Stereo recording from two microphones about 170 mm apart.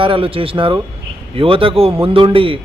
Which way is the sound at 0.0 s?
30° right (ahead or behind).